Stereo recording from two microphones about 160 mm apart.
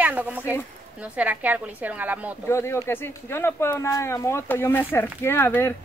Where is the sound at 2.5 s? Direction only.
15° left (ahead or behind).